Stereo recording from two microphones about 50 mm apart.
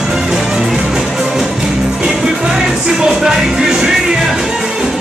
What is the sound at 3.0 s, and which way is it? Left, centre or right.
Speech, centre.